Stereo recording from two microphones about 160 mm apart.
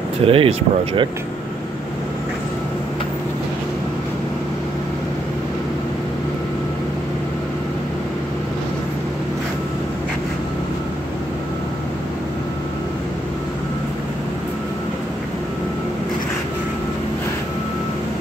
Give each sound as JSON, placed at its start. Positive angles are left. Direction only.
{"t": 0.2, "sound": "speech", "side_deg": -35}